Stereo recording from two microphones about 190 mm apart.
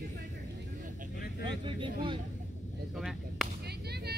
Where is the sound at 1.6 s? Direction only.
25° right (ahead or behind).